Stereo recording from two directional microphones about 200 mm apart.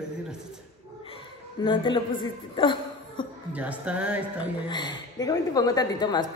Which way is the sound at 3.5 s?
5° right (ahead or behind).